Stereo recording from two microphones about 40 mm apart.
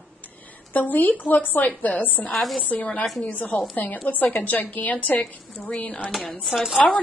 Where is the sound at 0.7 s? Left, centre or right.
Left.